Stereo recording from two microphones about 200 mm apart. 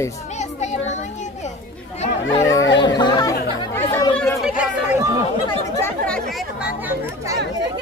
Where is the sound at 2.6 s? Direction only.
65° left (ahead or behind).